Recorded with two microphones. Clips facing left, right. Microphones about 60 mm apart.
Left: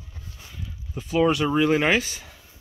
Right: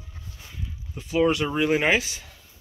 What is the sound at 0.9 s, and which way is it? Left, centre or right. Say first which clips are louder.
Speech: left 1 dB; centre.